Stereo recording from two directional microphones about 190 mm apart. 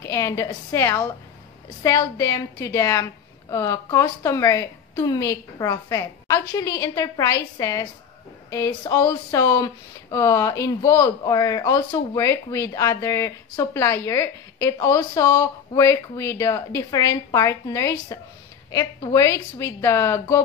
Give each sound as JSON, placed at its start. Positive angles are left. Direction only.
{"t": 0.0, "sound": "speech", "side_deg": 15}